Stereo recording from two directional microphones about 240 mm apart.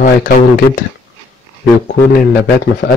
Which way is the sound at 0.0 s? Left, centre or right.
Left.